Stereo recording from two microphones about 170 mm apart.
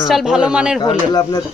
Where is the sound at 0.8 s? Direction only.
25° left (ahead or behind).